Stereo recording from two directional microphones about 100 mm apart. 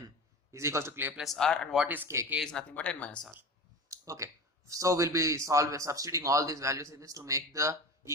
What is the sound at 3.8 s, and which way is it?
Speech, 30° right (ahead or behind).